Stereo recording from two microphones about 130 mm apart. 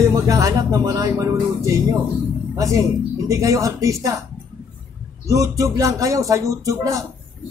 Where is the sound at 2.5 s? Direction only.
25° right (ahead or behind).